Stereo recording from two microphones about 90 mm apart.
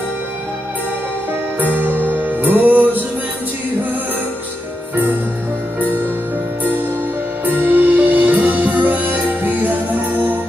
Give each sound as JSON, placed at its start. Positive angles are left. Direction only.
{"t": 1.6, "sound": "music", "side_deg": -20}
{"t": 7.4, "sound": "music", "side_deg": -20}